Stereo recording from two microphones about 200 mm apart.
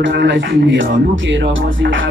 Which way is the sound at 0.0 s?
65° right (ahead or behind).